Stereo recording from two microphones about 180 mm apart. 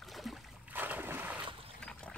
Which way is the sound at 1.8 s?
5° left (ahead or behind).